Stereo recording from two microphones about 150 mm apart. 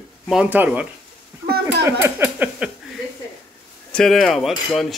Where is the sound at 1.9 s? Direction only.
15° right (ahead or behind).